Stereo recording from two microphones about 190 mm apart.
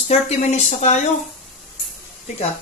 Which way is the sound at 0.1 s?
35° left (ahead or behind).